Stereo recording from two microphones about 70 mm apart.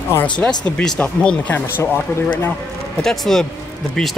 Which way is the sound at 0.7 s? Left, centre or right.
Centre.